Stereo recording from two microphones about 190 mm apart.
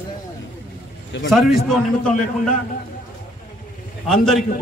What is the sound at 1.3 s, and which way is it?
Speech, centre (ahead or behind).